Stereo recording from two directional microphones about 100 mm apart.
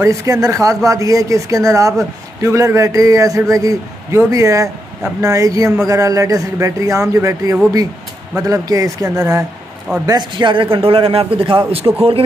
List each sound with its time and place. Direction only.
0.0 s a man's voice: 30° right (ahead or behind)
10.0 s a man's voice: 50° right (ahead or behind)